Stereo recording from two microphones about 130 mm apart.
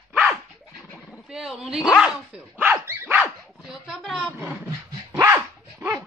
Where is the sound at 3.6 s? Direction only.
Centre (ahead or behind).